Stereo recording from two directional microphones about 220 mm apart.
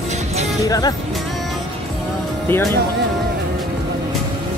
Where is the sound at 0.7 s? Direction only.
15° left (ahead or behind).